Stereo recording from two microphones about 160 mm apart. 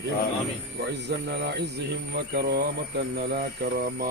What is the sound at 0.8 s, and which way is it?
Speech, 90° right.